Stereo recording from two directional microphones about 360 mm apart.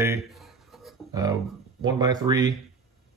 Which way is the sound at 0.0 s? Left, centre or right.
Centre.